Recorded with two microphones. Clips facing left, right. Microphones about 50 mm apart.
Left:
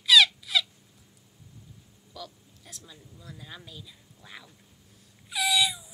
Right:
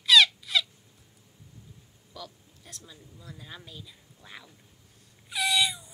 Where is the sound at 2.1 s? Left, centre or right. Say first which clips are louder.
Left 1 dB; centre.